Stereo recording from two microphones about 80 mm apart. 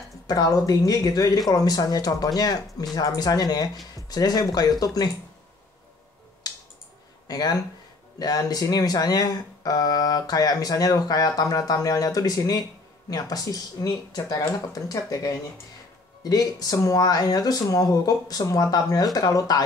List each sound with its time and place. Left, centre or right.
0.3 s speech: left
7.2 s speech: left